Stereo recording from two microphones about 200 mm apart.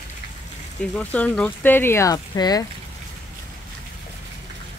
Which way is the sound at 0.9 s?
5° left (ahead or behind).